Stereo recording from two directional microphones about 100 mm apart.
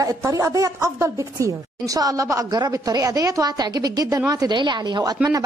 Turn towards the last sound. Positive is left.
turn(degrees=-45)  # may be behind; listen again after turning